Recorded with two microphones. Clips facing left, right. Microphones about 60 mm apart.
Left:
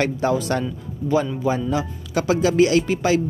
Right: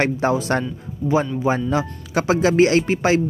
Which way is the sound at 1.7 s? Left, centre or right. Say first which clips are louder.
Right 2 dB; right.